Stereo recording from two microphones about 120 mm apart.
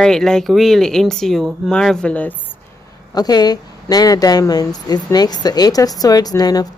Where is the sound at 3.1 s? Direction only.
35° left (ahead or behind).